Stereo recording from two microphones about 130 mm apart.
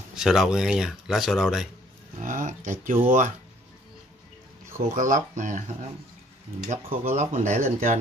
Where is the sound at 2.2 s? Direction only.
90° right.